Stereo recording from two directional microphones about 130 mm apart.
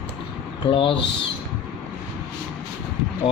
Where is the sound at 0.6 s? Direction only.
40° left (ahead or behind).